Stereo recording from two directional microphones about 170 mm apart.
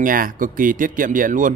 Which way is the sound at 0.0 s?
55° right (ahead or behind).